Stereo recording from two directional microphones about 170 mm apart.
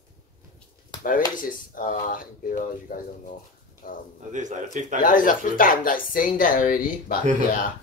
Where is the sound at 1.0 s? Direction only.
55° left (ahead or behind).